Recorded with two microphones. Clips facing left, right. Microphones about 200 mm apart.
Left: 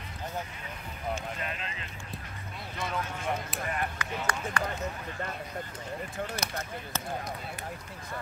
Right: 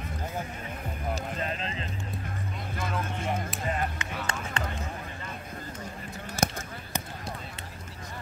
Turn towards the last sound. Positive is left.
turn(degrees=-50)  # may be behind; listen again after turning